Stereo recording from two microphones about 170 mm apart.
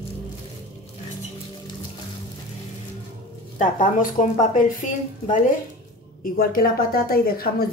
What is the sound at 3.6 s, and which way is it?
A woman's voice, 50° left (ahead or behind).